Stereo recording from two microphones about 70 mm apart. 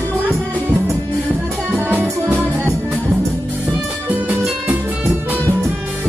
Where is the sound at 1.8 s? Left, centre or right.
Right.